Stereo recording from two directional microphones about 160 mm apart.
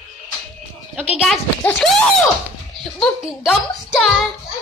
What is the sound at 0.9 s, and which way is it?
Speech, 10° right (ahead or behind).